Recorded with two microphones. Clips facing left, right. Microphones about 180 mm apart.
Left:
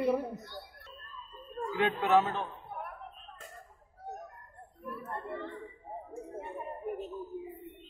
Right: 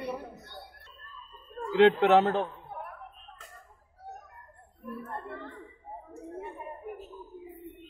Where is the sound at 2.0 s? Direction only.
70° right (ahead or behind).